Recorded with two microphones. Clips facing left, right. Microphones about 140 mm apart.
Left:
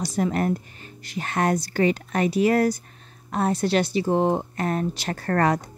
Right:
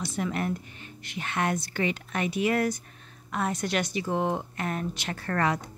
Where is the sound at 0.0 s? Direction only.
40° left (ahead or behind).